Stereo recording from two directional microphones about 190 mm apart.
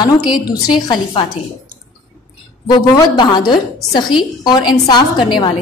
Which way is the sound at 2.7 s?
25° left (ahead or behind).